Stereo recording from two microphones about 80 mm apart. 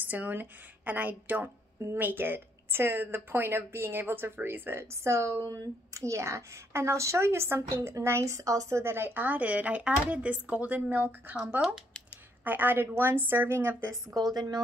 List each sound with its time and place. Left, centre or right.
0.0 s a woman's voice: right
11.3 s speech: centre
12.4 s a woman's voice: right
14.1 s speech: right